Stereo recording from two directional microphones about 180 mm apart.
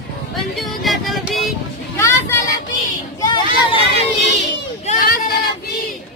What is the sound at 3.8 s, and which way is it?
Speech, 40° right (ahead or behind).